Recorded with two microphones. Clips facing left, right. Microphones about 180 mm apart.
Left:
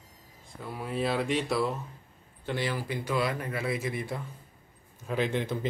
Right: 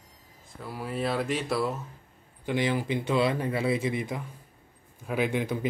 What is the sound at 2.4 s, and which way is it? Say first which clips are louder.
A man's voice: right 5 dB; 15° right (ahead or behind).